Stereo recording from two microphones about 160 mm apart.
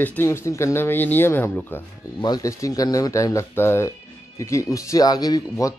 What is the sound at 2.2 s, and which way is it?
A man's voice, 25° left (ahead or behind).